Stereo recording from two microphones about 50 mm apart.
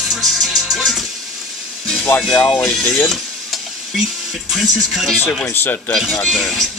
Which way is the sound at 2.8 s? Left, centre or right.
Left.